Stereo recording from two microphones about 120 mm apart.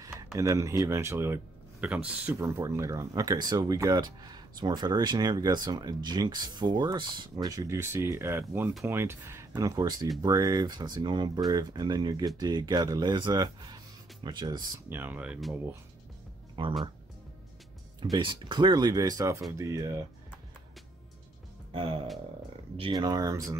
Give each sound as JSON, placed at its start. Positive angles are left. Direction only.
{"t": 0.4, "sound": "speech", "side_deg": -25}
{"t": 2.3, "sound": "speech", "side_deg": -25}
{"t": 14.9, "sound": "speech", "side_deg": -15}
{"t": 16.6, "sound": "speech", "side_deg": -40}
{"t": 18.1, "sound": "speech", "side_deg": -45}
{"t": 21.7, "sound": "music", "side_deg": -50}
{"t": 22.8, "sound": "speech", "side_deg": -40}